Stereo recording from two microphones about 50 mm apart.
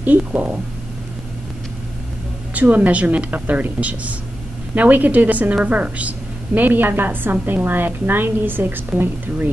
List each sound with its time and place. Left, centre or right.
0.0 s a woman's voice: right
2.5 s a woman's voice: right
4.7 s a woman's voice: right